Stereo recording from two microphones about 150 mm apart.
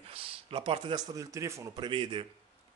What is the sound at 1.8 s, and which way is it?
Speech, 35° right (ahead or behind).